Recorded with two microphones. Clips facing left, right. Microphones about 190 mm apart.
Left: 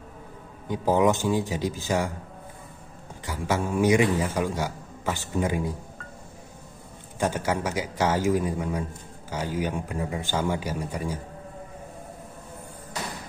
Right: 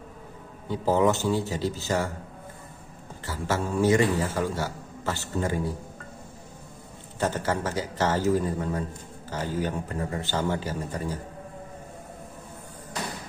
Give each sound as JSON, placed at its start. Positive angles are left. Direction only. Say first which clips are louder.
{"t": 0.7, "sound": "a man's voice", "louder": "left 1 dB", "side_deg": 15}
{"t": 3.3, "sound": "a man's voice", "louder": "left 1 dB", "side_deg": 15}
{"t": 7.2, "sound": "a man's voice", "louder": "left 1 dB", "side_deg": 15}